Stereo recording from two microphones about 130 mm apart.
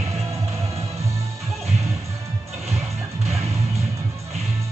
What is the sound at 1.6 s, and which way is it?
Music, 55° right (ahead or behind).